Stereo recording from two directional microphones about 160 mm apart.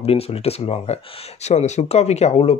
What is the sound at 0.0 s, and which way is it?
Speech, 40° left (ahead or behind).